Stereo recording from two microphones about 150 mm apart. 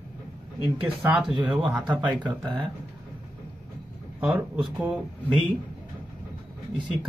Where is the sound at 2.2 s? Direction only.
30° right (ahead or behind).